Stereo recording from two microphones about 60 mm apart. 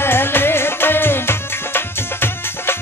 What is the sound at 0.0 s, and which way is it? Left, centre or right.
Music, left.